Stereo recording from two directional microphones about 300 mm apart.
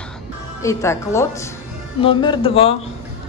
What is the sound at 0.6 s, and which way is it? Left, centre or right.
A woman's voice, centre.